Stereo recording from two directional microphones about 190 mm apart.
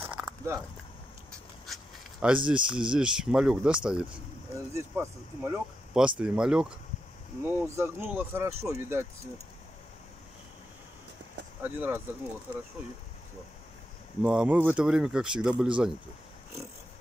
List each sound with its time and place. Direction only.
0.0 s a sound: 10° right (ahead or behind)
1.7 s speech: 5° right (ahead or behind)
11.6 s speech: 10° right (ahead or behind)
14.2 s speech: 5° right (ahead or behind)